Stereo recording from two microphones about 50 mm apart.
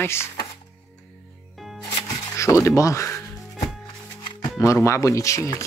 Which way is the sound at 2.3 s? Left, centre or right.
Left.